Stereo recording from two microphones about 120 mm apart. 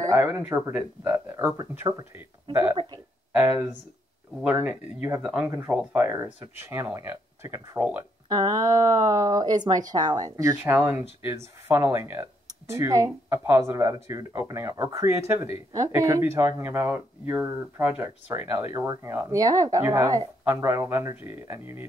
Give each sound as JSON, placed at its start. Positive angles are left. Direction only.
{"t": 0.0, "sound": "speech", "side_deg": -20}
{"t": 2.7, "sound": "speech", "side_deg": -45}
{"t": 4.4, "sound": "speech", "side_deg": -10}
{"t": 8.3, "sound": "speech", "side_deg": -35}
{"t": 10.6, "sound": "speech", "side_deg": -15}